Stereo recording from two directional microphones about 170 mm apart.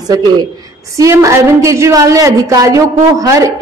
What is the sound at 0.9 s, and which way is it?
A woman's voice, 20° right (ahead or behind).